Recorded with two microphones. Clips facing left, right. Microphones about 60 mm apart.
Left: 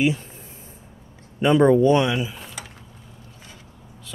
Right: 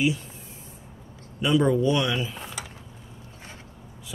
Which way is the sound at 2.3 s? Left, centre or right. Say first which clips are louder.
Right 1 dB; centre.